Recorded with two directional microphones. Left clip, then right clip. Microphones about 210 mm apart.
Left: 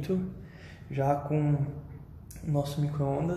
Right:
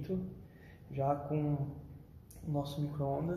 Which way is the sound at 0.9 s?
5° left (ahead or behind).